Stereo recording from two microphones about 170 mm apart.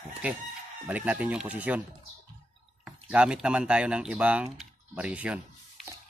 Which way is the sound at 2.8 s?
5° right (ahead or behind).